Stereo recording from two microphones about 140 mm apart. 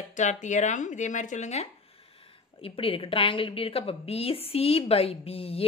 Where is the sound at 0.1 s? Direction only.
60° left (ahead or behind).